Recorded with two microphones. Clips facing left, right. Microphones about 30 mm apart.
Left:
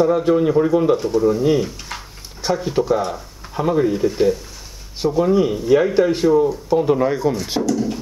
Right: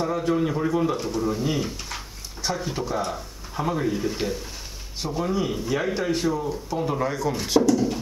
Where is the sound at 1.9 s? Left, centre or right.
Centre.